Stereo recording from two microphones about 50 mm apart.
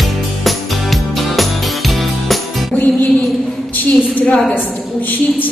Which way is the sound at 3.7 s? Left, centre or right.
Left.